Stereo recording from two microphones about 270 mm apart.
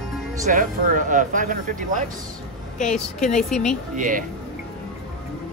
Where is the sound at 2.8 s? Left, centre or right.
Centre.